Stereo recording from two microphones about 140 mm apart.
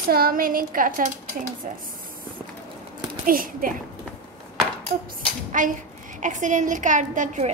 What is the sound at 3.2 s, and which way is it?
Speech, 90° right.